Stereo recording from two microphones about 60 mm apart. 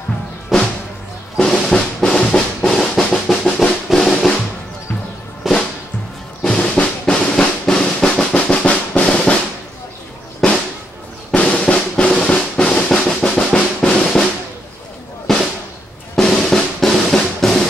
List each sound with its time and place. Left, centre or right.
0.5 s music: centre
1.5 s drum: centre
5.4 s music: centre
6.4 s drum: centre
11.3 s drum: centre
15.3 s music: centre
16.2 s drum: centre